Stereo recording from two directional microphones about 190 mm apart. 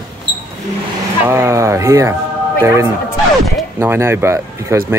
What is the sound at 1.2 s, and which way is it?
Speech, 15° right (ahead or behind).